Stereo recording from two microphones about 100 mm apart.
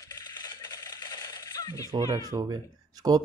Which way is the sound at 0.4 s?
40° left (ahead or behind).